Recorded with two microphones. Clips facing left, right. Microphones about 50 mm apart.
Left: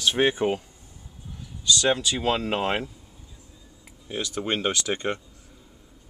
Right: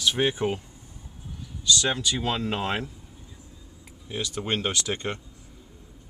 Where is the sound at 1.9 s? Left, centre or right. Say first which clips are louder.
Left 3 dB; left.